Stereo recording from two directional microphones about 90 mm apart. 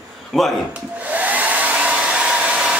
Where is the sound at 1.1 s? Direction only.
20° right (ahead or behind).